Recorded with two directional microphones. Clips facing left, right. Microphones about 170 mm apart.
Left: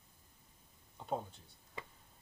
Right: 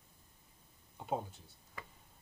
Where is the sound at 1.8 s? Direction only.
25° left (ahead or behind).